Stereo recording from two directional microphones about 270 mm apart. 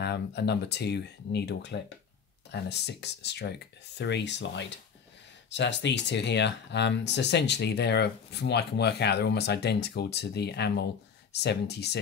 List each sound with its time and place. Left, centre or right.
0.0 s speech: left